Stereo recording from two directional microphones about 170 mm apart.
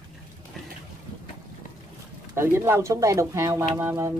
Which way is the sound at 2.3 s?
15° right (ahead or behind).